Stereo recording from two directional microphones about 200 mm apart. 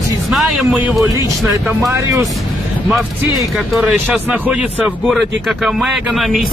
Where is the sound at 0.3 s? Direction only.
Centre (ahead or behind).